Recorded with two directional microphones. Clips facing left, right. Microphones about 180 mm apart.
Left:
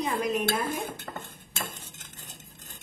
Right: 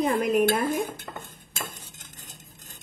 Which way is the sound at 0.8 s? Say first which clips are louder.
Right 4 dB; 10° right (ahead or behind).